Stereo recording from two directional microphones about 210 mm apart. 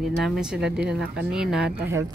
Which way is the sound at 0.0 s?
Centre (ahead or behind).